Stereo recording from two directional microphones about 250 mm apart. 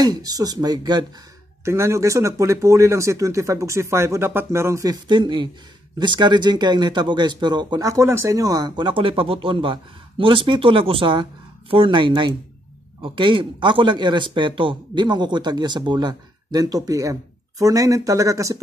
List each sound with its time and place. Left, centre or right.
0.0 s a man's voice: centre